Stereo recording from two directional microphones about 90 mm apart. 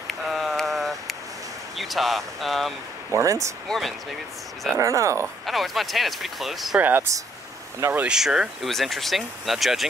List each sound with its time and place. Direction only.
0.3 s a sound: centre (ahead or behind)
1.8 s speech: centre (ahead or behind)
3.1 s speech: 35° right (ahead or behind)
3.6 s speech: 5° left (ahead or behind)
4.7 s speech: 35° right (ahead or behind)
5.5 s speech: centre (ahead or behind)
6.8 s speech: 20° right (ahead or behind)
8.1 s speech: 10° right (ahead or behind)